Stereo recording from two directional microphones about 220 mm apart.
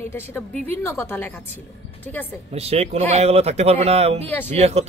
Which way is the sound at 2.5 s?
30° right (ahead or behind).